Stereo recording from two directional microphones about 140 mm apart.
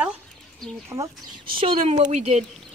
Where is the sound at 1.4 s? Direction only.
40° right (ahead or behind); by 2.4 s 55° right (ahead or behind).